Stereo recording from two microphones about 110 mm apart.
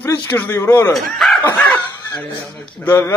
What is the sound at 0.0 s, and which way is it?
Speech, 25° left (ahead or behind).